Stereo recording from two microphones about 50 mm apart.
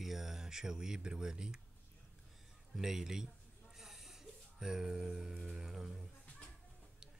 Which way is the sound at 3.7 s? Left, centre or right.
Centre.